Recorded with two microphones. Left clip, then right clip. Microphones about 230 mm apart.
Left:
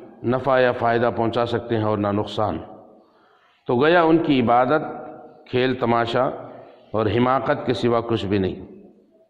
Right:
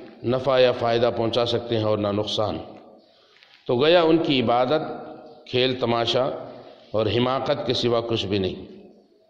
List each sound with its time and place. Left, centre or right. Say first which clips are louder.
0.2 s a man's voice: left 1 dB; left
3.6 s a man's voice: left 1 dB; left